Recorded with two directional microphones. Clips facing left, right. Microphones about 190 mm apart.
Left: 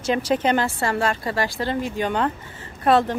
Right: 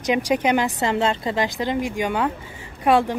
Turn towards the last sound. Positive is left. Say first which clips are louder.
# even
turn(degrees=-10)  # may be behind; listen again after turning